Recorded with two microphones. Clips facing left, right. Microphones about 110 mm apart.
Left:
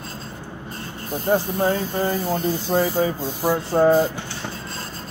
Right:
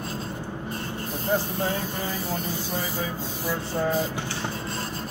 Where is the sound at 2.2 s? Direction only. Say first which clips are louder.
Left 7 dB; centre (ahead or behind).